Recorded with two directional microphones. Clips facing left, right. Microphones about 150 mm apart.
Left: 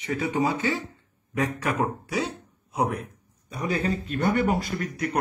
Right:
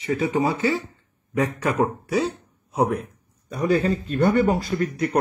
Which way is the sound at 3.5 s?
40° right (ahead or behind).